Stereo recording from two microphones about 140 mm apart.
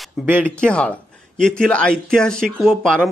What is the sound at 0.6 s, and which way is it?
Speech, 10° left (ahead or behind).